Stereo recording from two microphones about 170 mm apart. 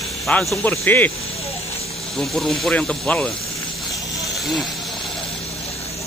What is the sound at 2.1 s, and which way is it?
Speech, centre (ahead or behind).